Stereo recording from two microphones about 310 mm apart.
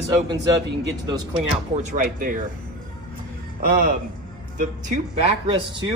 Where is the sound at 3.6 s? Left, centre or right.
Right.